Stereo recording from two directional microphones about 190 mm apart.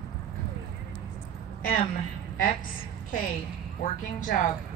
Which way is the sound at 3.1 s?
50° left (ahead or behind).